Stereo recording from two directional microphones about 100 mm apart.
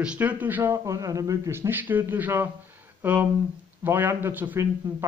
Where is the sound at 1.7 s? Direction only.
20° right (ahead or behind).